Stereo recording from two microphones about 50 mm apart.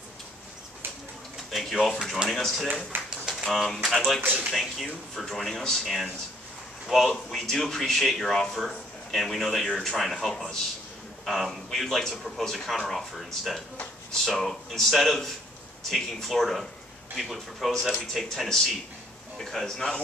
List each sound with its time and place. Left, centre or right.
1.9 s speech: centre
2.9 s a sound: right
3.3 s typewriter: centre
3.8 s speech: centre